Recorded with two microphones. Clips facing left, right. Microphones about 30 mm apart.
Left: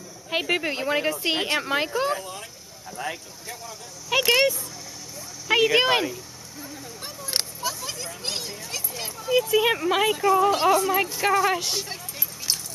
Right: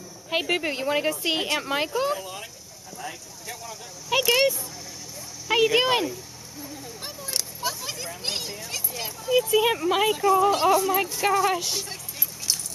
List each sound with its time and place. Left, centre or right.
0.3 s a woman's voice: centre
2.2 s speech: centre
3.0 s speech: left
3.4 s speech: centre
5.5 s a woman's voice: centre
7.6 s speech: centre